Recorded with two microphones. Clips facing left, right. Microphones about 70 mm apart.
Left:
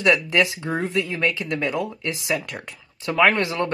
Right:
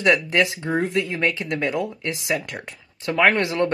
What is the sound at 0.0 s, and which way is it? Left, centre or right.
Speech, right.